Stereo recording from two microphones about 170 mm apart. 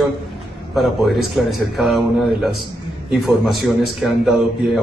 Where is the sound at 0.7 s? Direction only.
Centre (ahead or behind).